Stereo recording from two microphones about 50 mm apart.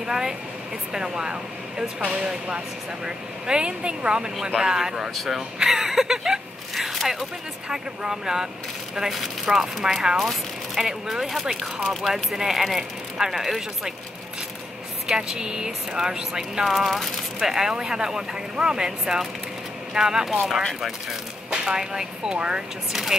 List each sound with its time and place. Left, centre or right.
0.0 s speech: centre
2.0 s speech: right
6.7 s a sound: centre
7.7 s speech: centre
15.0 s speech: centre
16.6 s speech: centre
21.5 s speech: centre
22.9 s speech: centre